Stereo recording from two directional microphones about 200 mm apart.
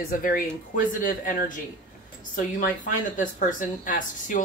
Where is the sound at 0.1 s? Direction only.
45° left (ahead or behind).